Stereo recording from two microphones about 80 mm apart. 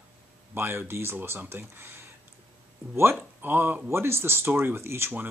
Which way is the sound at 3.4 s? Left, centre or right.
Right.